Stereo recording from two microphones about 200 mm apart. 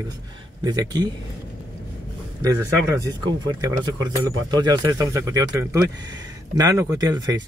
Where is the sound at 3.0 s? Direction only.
20° right (ahead or behind).